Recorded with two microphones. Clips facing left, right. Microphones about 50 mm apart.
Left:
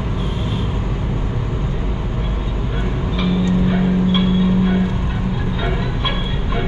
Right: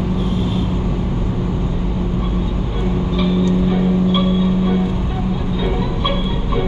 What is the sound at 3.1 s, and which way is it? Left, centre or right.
Vehicle, centre.